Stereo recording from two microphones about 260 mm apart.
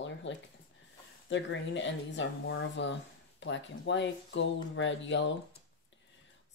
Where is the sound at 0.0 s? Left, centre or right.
Left.